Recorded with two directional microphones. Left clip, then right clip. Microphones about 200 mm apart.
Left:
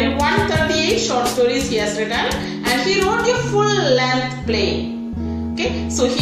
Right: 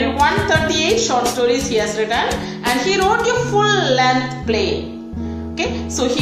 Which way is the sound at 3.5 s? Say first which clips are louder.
Right 2 dB; 5° right (ahead or behind).